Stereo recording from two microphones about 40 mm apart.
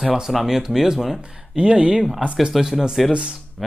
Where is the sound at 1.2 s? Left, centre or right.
Right.